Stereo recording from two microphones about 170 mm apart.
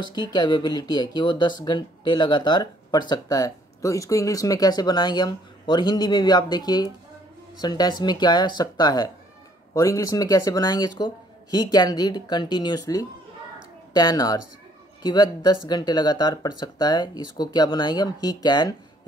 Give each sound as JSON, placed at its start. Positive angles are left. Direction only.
{"t": 0.0, "sound": "speech", "side_deg": 25}